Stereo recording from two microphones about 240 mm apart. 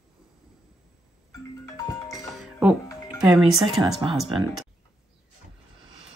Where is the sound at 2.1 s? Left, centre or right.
Centre.